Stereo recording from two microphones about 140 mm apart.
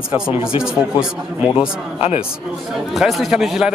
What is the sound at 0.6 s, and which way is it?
Speech, 5° right (ahead or behind).